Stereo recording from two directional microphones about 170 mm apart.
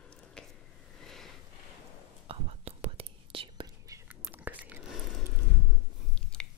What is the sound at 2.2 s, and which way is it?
Whispering, 35° right (ahead or behind).